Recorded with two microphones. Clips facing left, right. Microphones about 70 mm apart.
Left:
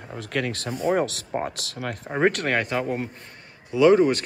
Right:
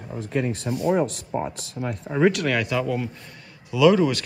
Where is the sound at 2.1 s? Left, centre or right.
Left.